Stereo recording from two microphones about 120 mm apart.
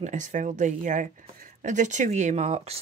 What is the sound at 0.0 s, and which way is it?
Speech, 90° right.